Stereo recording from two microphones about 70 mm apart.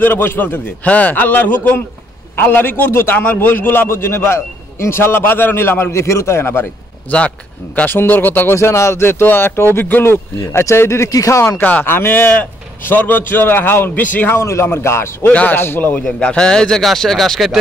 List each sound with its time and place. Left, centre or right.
0.0 s a man's voice: left
7.1 s a man's voice: left
8.5 s a man's voice: left
11.1 s speech: left
11.6 s a man's voice: left
14.4 s a man's voice: left
15.2 s a man's voice: left
16.0 s a man's voice: centre